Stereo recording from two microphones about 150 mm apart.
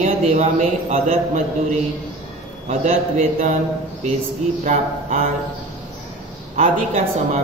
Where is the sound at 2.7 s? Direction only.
50° right (ahead or behind).